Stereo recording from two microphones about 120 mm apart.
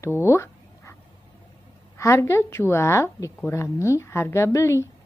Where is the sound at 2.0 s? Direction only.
25° left (ahead or behind).